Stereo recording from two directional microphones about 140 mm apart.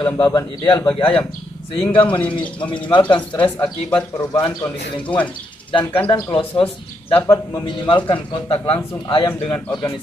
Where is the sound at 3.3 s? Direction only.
35° left (ahead or behind).